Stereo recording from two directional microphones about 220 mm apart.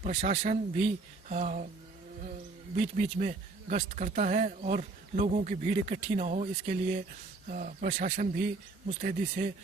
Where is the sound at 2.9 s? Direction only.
35° right (ahead or behind).